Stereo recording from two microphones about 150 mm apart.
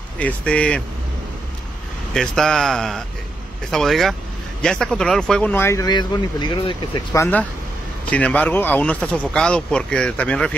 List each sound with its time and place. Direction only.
0.2 s speech: 5° left (ahead or behind)
2.1 s speech: 5° left (ahead or behind); by 7.2 s 30° left (ahead or behind)
7.2 s speech: 10° left (ahead or behind)